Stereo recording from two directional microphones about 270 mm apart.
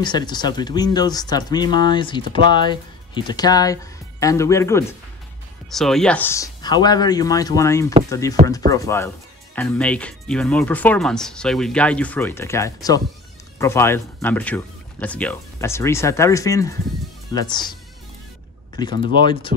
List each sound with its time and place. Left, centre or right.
0.0 s speech: centre
18.8 s speech: centre